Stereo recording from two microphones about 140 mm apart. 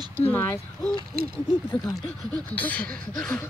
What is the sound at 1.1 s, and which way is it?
Owl, 90° right.